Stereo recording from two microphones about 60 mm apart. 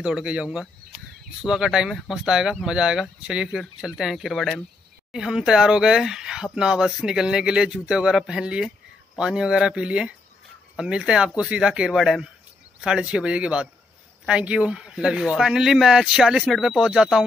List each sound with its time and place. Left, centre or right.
0.0 s speech: centre
5.1 s speech: centre